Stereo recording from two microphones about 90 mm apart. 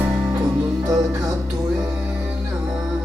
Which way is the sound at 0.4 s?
45° right (ahead or behind).